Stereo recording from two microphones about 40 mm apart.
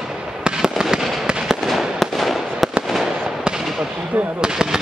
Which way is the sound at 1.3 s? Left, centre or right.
Centre.